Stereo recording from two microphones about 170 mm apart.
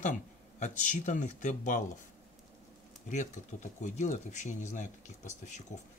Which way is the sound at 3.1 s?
45° left (ahead or behind).